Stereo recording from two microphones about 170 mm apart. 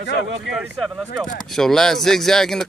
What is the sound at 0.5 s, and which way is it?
Speech, centre (ahead or behind).